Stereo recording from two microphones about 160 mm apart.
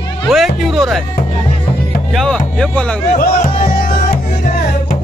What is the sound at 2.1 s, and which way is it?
Speech, 5° left (ahead or behind).